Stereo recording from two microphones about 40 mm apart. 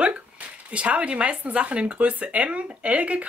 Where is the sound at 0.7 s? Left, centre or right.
Right.